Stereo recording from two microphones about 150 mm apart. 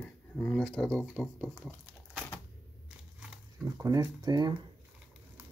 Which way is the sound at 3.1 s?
5° right (ahead or behind).